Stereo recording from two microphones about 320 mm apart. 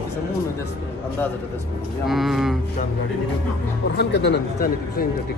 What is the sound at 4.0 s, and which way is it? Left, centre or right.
Speech, left.